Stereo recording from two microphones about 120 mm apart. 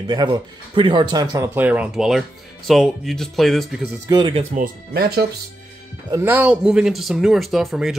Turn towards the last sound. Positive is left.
turn(degrees=-5)  # may be behind; listen again after turning